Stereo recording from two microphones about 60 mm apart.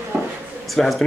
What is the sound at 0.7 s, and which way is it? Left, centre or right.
Speech, centre.